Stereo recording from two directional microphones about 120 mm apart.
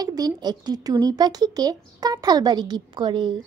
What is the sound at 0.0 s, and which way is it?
Speech, 30° right (ahead or behind).